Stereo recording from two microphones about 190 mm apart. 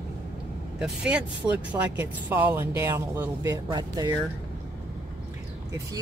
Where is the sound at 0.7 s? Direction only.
5° right (ahead or behind); by 4.2 s 20° right (ahead or behind).